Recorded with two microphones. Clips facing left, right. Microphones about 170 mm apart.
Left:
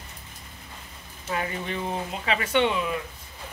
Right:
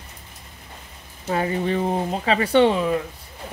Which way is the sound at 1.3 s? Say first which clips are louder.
Right 8 dB; 35° right (ahead or behind).